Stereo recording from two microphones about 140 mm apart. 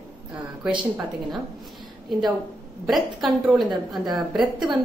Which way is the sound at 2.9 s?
Centre (ahead or behind).